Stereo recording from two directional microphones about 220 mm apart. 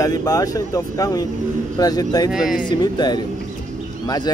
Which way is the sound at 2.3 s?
5° right (ahead or behind).